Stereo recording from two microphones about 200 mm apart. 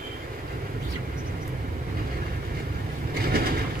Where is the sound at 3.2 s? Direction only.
50° right (ahead or behind).